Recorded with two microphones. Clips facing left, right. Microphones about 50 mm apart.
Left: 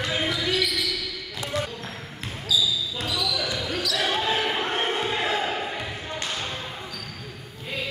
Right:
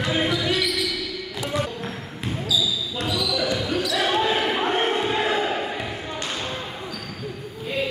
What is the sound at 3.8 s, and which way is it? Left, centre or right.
Basketball bounce, centre.